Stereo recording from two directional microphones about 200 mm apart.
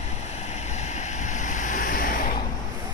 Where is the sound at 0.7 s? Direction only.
35° left (ahead or behind).